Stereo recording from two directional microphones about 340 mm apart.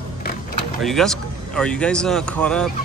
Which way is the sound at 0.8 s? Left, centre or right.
Centre.